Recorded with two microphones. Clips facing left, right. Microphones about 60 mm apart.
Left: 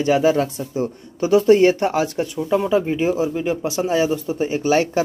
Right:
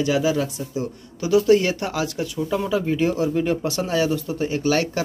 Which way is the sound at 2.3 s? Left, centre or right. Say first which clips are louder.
Left 5 dB; centre.